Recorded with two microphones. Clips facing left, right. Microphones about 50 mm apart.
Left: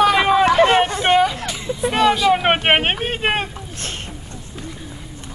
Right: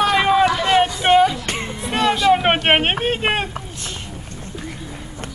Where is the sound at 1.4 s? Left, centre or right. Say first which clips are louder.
Even; right.